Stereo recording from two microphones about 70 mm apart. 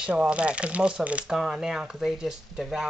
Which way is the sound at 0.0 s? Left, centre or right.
Centre.